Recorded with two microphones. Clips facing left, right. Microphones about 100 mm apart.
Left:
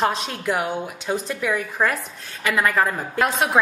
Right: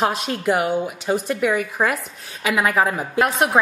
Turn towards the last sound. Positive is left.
turn(degrees=-5)  # may be behind; listen again after turning